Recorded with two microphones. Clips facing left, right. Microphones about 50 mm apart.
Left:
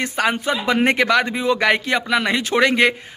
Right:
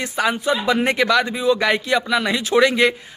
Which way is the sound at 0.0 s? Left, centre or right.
Left.